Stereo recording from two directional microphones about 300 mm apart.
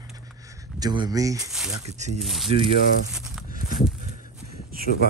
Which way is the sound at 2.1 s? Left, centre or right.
Centre.